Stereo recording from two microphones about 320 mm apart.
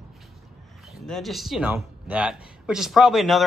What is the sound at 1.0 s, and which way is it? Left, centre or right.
A man's voice, centre.